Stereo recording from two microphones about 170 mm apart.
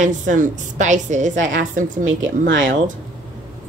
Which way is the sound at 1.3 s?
90° right.